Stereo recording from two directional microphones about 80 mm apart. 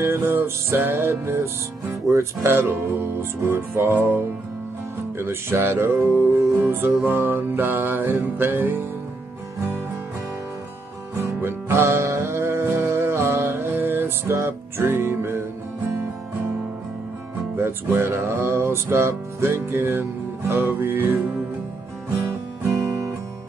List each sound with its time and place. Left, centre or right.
0.0 s music: right
5.2 s music: right
11.1 s music: right
17.6 s music: right